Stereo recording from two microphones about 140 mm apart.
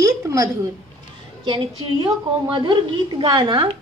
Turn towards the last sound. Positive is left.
turn(degrees=-35)  # may be behind; listen again after turning